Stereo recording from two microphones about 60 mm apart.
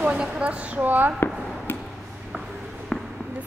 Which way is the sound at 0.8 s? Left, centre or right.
Right.